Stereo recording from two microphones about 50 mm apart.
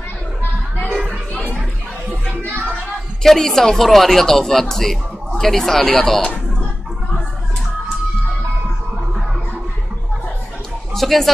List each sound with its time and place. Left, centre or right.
2.7 s speech: centre
11.0 s music: centre